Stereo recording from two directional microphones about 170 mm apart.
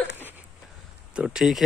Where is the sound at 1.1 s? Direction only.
5° right (ahead or behind).